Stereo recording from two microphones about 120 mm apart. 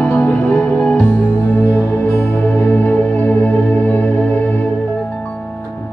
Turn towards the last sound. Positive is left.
turn(degrees=15)  # may be behind; listen again after turning